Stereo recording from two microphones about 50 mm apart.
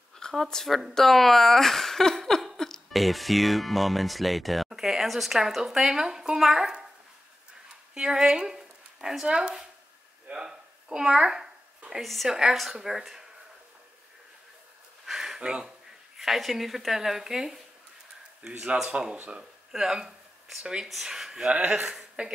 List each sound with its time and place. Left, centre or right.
0.2 s speech: centre
7.9 s speech: centre
10.2 s a sound: centre
12.0 s a woman's voice: centre
15.0 s a sound: centre
16.2 s a woman's voice: centre
18.6 s speech: centre
19.1 s speech: right
19.7 s speech: centre
21.5 s speech: right